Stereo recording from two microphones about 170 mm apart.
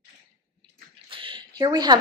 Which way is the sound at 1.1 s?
30° right (ahead or behind).